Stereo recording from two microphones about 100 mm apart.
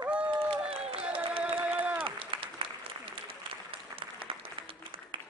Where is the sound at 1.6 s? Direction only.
10° right (ahead or behind).